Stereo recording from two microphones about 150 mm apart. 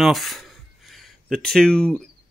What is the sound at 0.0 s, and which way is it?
Speech, centre (ahead or behind).